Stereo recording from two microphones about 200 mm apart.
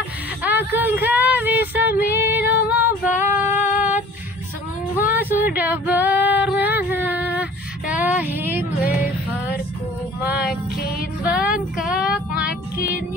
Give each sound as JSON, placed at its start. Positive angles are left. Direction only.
{"t": 0.4, "sound": "female singing", "side_deg": -10}
{"t": 4.9, "sound": "a sound", "side_deg": -10}
{"t": 5.6, "sound": "female singing", "side_deg": -10}
{"t": 7.9, "sound": "music", "side_deg": -10}
{"t": 10.2, "sound": "music", "side_deg": -5}
{"t": 10.5, "sound": "music", "side_deg": 50}
{"t": 11.8, "sound": "child singing", "side_deg": -5}